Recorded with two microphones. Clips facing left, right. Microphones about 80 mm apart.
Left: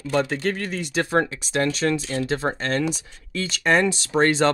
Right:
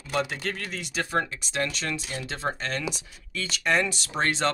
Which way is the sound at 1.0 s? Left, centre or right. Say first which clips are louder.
Left 6 dB; left.